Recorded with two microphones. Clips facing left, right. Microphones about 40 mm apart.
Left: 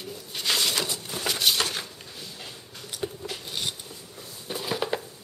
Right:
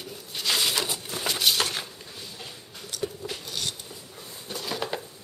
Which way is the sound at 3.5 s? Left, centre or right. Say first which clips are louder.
Left 2 dB; centre.